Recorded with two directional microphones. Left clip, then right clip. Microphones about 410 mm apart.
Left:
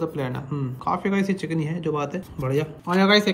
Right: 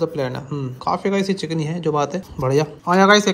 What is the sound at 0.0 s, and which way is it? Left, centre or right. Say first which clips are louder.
Speech: right 6 dB; centre.